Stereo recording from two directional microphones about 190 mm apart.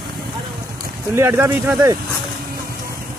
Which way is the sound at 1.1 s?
15° right (ahead or behind).